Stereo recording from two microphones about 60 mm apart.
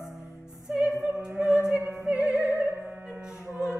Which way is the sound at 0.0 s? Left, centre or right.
Centre.